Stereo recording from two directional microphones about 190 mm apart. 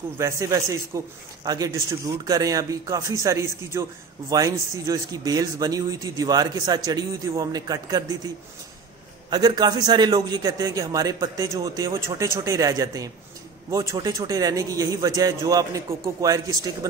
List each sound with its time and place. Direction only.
0.2 s a man's voice: 15° right (ahead or behind)
9.3 s a man's voice: 20° right (ahead or behind)